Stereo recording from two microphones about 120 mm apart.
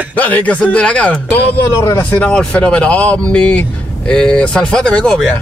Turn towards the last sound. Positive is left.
turn(degrees=10)  # may be behind; listen again after turning